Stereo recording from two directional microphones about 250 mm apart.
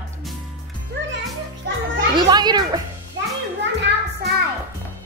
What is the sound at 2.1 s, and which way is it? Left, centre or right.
Speech, centre.